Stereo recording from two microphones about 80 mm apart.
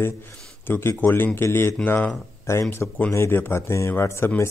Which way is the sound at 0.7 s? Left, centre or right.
Left.